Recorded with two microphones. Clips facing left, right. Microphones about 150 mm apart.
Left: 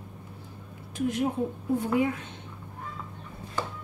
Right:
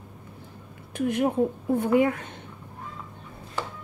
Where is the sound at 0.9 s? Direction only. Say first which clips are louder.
Right 4 dB; 60° right (ahead or behind).